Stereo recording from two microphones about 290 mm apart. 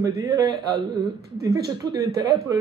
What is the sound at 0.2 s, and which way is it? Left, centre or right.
A man's voice, centre.